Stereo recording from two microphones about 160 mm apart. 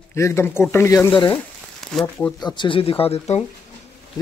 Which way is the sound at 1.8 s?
Centre (ahead or behind).